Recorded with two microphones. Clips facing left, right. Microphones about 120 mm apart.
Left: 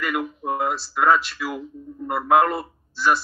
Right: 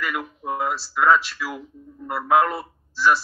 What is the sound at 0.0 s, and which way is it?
A man's voice, centre (ahead or behind).